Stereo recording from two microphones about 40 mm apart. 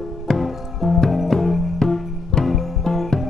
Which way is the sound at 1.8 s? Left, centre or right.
Centre.